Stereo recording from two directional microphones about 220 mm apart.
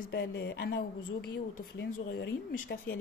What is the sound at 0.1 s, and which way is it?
A woman's voice, 45° left (ahead or behind).